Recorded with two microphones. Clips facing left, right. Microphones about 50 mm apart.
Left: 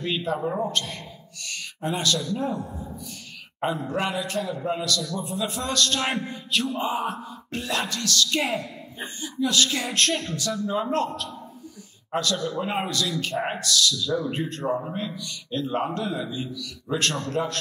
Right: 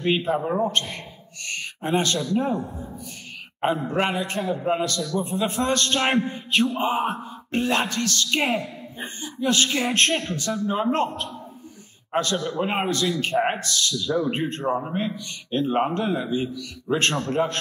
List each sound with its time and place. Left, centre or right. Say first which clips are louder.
0.0 s a man's voice: right 4 dB; right